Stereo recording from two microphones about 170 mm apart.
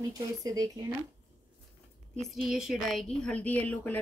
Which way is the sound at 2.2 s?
Centre (ahead or behind).